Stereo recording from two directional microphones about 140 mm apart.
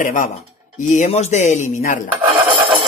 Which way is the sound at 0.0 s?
70° left (ahead or behind).